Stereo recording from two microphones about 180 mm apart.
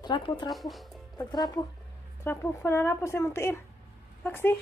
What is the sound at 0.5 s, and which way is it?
Speech, centre (ahead or behind).